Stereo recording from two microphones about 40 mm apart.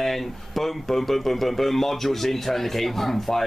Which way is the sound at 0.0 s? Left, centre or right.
Centre.